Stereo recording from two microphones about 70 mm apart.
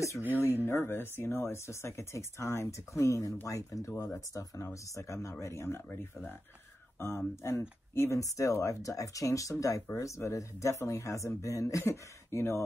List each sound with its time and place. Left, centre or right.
0.7 s speech: left
7.0 s speech: left